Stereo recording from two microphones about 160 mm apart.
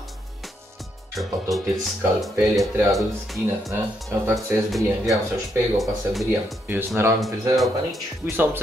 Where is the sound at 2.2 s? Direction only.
Centre (ahead or behind).